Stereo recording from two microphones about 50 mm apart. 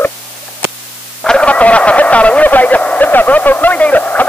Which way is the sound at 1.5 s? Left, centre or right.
Left.